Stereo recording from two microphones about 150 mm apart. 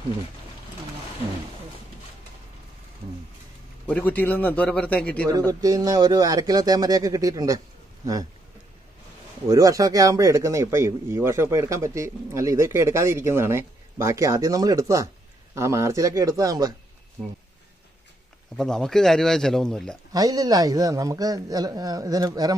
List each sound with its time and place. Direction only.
3.8 s a man's voice: 10° left (ahead or behind)
5.5 s a man's voice: 25° right (ahead or behind)
9.5 s a man's voice: 25° right (ahead or behind)
18.6 s a man's voice: 5° left (ahead or behind)
20.1 s a man's voice: 25° right (ahead or behind)